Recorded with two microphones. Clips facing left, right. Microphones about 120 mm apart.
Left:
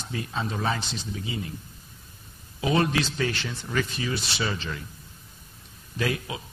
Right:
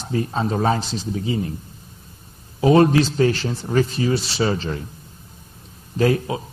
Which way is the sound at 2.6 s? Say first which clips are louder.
Right 10 dB; 35° right (ahead or behind).